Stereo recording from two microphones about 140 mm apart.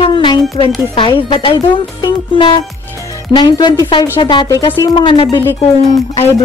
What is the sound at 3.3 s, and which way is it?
Speech, 35° left (ahead or behind).